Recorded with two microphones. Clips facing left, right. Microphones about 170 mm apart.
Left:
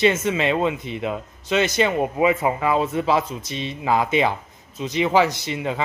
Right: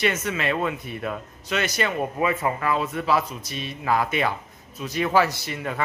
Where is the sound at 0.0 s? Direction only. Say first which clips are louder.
Left 5 dB; 25° left (ahead or behind).